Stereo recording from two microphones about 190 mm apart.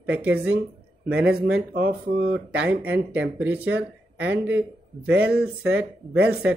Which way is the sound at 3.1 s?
5° right (ahead or behind).